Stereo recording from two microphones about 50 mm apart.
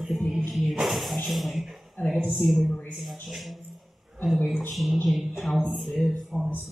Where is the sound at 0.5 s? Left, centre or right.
Centre.